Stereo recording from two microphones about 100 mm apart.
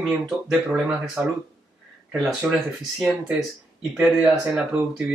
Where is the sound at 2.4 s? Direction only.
15° right (ahead or behind).